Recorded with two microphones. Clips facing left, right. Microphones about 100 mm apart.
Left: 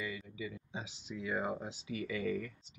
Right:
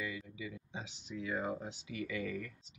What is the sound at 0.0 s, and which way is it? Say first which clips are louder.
Speech: left 1 dB; centre (ahead or behind).